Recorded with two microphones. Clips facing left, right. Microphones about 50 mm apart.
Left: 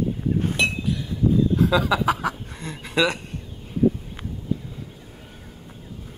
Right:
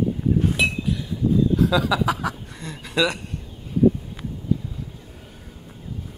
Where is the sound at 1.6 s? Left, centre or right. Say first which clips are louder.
Even; left.